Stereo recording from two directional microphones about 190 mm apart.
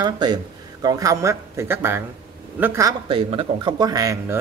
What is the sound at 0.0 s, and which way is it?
A man's voice, 25° right (ahead or behind).